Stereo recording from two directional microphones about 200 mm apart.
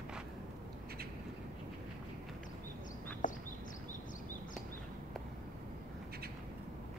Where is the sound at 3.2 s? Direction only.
40° left (ahead or behind).